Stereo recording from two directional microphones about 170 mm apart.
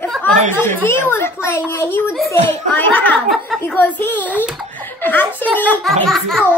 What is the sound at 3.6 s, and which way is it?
Speech, 10° left (ahead or behind).